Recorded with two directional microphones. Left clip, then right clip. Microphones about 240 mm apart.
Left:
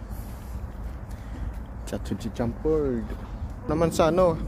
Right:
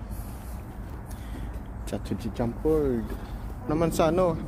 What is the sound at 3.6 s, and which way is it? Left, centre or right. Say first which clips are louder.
Speech: left 2 dB; centre.